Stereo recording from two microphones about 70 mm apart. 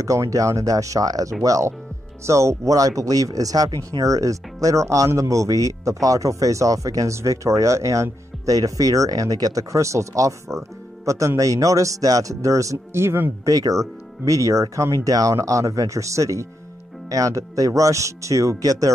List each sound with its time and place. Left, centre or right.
0.0 s speech: right
2.2 s speech: right
13.5 s speech: right